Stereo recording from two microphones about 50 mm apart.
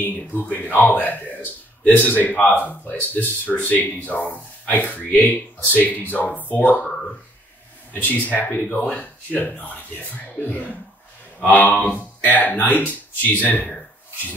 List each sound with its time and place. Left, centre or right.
0.5 s speech: left
7.9 s speech: left
8.6 s speech: centre
9.0 s speech: left